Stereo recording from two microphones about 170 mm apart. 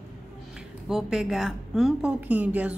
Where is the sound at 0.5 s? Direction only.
Centre (ahead or behind).